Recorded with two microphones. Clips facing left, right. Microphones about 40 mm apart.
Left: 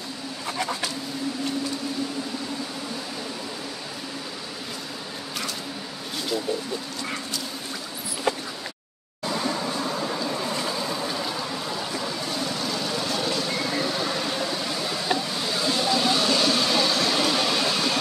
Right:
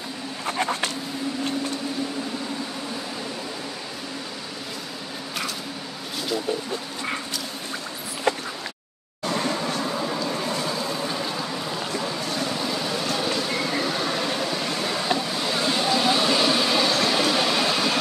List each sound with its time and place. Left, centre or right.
0.5 s a sound: right
8.3 s a sound: right
9.8 s vehicle: centre
11.1 s vehicle: centre
12.5 s lawn mower: centre
13.3 s vehicle: centre